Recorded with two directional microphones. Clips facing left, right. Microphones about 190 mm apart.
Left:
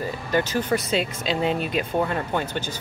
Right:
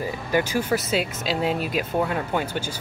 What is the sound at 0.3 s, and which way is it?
Speech, 10° right (ahead or behind).